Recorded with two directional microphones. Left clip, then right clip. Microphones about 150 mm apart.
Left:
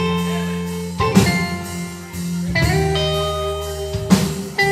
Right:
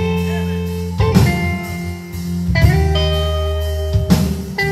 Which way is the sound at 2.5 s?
15° right (ahead or behind).